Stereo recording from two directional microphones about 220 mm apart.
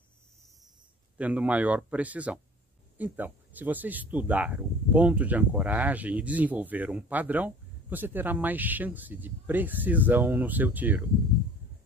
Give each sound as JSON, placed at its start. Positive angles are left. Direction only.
{"t": 1.1, "sound": "speech", "side_deg": -5}